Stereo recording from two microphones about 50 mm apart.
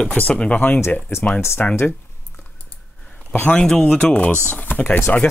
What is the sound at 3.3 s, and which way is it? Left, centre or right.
Speech, left.